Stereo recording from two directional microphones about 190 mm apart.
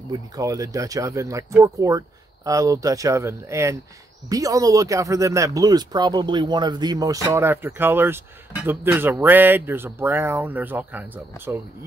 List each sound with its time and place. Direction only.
0.1 s speech: 15° right (ahead or behind)